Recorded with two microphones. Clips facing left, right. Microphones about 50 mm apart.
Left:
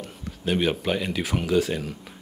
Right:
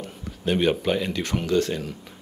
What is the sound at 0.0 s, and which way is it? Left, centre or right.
Speech, centre.